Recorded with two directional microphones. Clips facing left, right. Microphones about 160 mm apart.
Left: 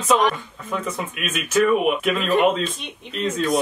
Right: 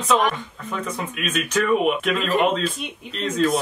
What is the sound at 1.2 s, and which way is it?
Speech, 5° left (ahead or behind).